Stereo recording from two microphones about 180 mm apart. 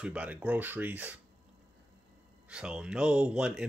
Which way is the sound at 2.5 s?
5° right (ahead or behind).